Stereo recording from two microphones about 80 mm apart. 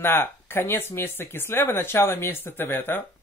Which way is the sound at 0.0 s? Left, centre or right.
Left.